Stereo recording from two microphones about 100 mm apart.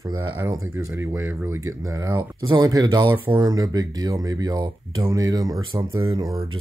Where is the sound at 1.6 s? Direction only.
35° right (ahead or behind).